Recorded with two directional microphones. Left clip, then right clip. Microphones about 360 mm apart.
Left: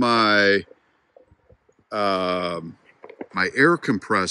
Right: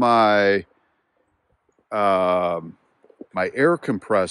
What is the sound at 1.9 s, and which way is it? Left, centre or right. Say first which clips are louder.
Speech: right 4 dB; centre.